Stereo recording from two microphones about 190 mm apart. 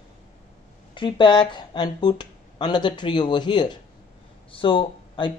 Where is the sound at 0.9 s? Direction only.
25° left (ahead or behind).